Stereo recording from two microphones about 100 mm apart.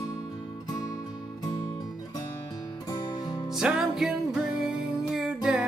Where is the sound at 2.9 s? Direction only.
45° left (ahead or behind).